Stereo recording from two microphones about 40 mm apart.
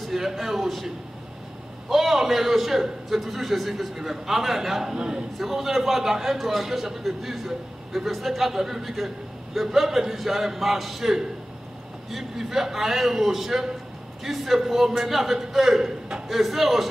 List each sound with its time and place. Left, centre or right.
0.0 s a man's voice: centre
4.9 s speech: right
5.4 s a man's voice: centre